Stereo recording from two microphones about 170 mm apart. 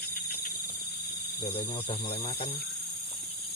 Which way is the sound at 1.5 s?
30° left (ahead or behind).